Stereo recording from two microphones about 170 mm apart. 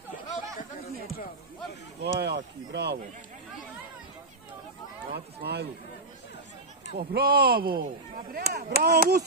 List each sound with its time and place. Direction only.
2.0 s speech: 75° right (ahead or behind)
5.1 s speech: 70° right (ahead or behind)
7.0 s speech: 65° right (ahead or behind)